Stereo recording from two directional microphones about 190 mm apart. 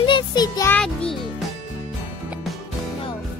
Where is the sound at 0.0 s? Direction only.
25° left (ahead or behind).